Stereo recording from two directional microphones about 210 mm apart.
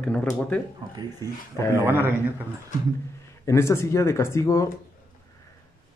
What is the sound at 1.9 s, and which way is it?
Speech, 10° right (ahead or behind).